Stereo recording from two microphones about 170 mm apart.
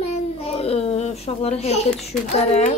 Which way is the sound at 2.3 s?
40° left (ahead or behind).